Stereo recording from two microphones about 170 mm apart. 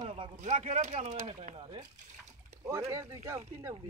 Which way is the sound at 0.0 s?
30° right (ahead or behind).